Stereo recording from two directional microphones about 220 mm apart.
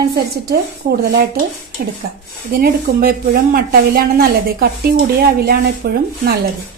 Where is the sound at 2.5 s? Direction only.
40° right (ahead or behind).